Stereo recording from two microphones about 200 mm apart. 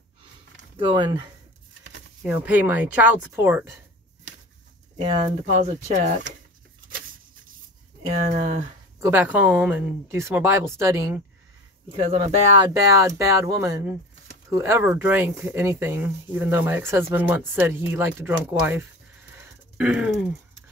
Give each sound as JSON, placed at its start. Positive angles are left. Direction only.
{"t": 0.7, "sound": "speech", "side_deg": -25}
{"t": 2.2, "sound": "speech", "side_deg": -10}
{"t": 4.9, "sound": "speech", "side_deg": -25}
{"t": 5.5, "sound": "speech", "side_deg": -35}
{"t": 8.1, "sound": "speech", "side_deg": -35}
{"t": 9.0, "sound": "speech", "side_deg": -10}
{"t": 19.8, "sound": "a sound", "side_deg": -5}